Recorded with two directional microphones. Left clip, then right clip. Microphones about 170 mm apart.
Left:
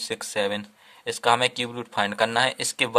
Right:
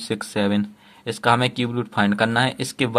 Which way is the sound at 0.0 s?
25° left (ahead or behind).